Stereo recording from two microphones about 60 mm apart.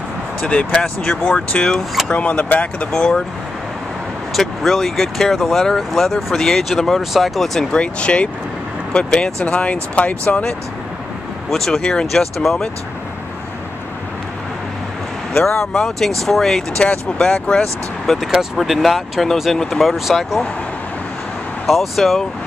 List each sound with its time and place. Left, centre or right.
0.4 s speech: centre
2.9 s speech: centre
4.3 s speech: centre
7.7 s speech: centre
11.5 s speech: centre
15.7 s speech: centre
18.1 s speech: centre
21.6 s speech: centre